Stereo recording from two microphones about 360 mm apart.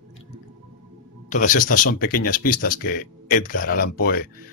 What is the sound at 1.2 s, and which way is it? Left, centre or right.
Speech, left.